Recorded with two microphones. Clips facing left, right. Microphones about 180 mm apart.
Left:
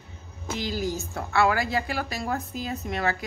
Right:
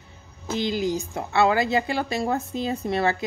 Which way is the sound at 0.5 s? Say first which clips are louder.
Right 5 dB; 25° right (ahead or behind).